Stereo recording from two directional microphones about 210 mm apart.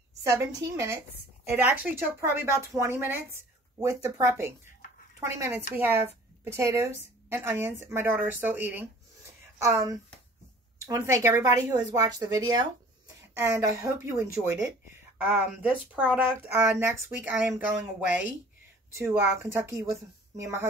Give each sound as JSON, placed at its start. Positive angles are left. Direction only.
{"t": 0.2, "sound": "speech", "side_deg": -15}
{"t": 18.9, "sound": "speech", "side_deg": -15}